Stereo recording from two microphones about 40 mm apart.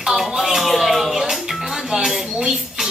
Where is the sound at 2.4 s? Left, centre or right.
Centre.